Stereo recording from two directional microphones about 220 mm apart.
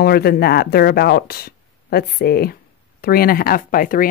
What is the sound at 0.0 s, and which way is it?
Speech, 45° left (ahead or behind).